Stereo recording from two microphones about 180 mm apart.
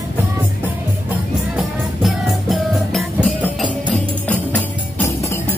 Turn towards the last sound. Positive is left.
turn(degrees=10)  # may be behind; listen again after turning